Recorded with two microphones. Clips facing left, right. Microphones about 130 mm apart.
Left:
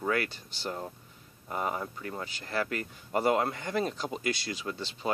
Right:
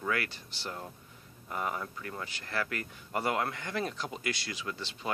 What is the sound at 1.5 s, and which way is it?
Speech, 25° left (ahead or behind).